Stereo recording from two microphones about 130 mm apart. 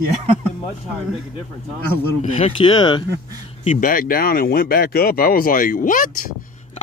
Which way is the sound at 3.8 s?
90° left.